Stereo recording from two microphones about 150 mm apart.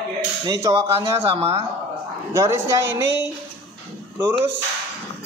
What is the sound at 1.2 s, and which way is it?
Speech, 40° right (ahead or behind).